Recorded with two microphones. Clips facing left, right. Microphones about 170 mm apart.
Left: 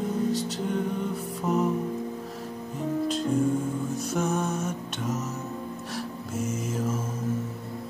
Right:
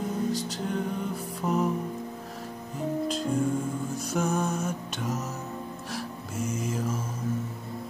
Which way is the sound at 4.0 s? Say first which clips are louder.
Right 1 dB; centre (ahead or behind).